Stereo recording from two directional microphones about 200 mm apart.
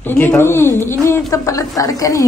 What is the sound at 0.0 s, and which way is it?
A woman's voice, 10° left (ahead or behind).